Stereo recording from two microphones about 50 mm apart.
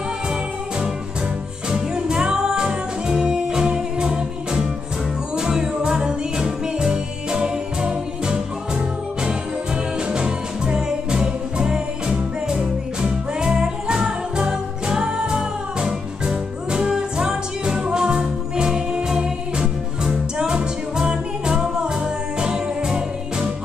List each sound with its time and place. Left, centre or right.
1.7 s music: centre
10.0 s music: centre